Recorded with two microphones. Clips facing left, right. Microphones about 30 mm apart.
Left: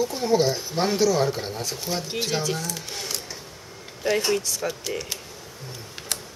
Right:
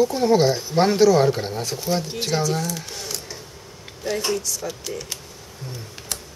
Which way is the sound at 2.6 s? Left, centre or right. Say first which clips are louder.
Right 3 dB; centre.